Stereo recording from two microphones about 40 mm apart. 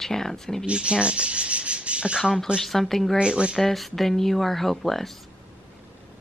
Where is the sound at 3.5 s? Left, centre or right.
Centre.